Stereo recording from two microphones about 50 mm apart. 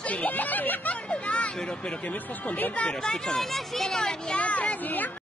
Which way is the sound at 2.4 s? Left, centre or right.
Left.